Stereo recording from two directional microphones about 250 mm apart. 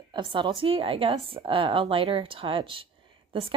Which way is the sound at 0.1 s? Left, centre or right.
Centre.